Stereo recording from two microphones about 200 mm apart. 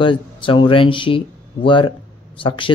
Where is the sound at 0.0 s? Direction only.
25° left (ahead or behind).